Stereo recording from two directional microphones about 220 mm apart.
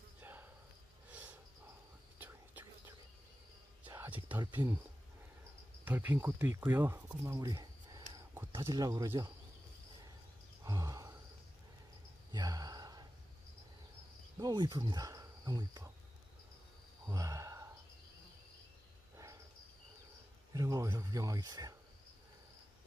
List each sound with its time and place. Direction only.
0.2 s insect: 10° right (ahead or behind)
2.1 s whispering: 10° right (ahead or behind)
3.8 s a sound: 10° right (ahead or behind)
5.9 s speech: 10° right (ahead or behind)
10.6 s a sound: 15° right (ahead or behind)
12.3 s gasp: 15° right (ahead or behind)
14.4 s speech: 20° right (ahead or behind)
17.0 s a sound: 15° right (ahead or behind)
20.5 s speech: 15° right (ahead or behind)